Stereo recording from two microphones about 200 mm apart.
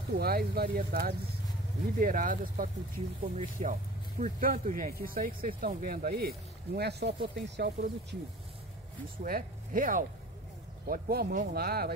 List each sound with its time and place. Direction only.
0.2 s speech: 50° right (ahead or behind)
9.2 s speech: 45° right (ahead or behind)